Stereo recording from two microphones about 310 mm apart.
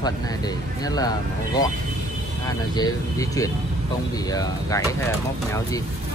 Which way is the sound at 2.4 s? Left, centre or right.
Centre.